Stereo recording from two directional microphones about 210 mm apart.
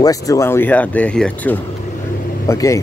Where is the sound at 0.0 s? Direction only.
15° left (ahead or behind).